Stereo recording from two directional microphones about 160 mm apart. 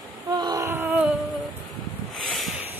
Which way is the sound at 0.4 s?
20° right (ahead or behind).